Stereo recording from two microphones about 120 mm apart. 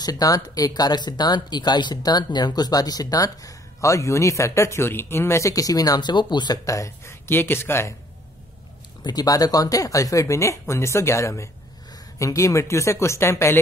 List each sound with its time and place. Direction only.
0.0 s speech: 30° left (ahead or behind)
9.0 s speech: 30° left (ahead or behind)